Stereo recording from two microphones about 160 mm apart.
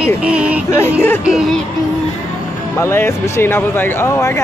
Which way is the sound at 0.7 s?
15° left (ahead or behind).